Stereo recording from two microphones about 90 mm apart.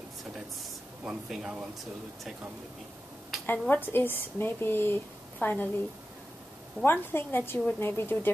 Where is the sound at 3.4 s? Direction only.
20° left (ahead or behind).